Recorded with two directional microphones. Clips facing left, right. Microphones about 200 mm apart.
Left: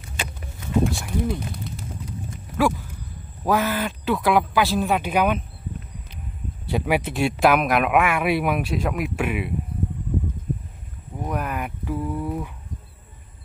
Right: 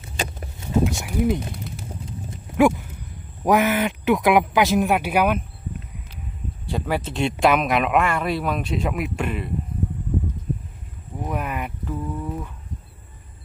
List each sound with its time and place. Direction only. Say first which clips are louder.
0.2 s a sound: right 4 dB; 40° right (ahead or behind)
0.9 s a man's voice: right 4 dB; 20° right (ahead or behind)
2.5 s dog: right 5 dB; 20° right (ahead or behind)
3.4 s a man's voice: right 3 dB; 20° right (ahead or behind)
6.7 s speech: left 3 dB; 10° left (ahead or behind)
8.6 s speech: even; centre (ahead or behind)
11.2 s a sound: even; centre (ahead or behind)
11.8 s speech: left 2 dB; 10° left (ahead or behind)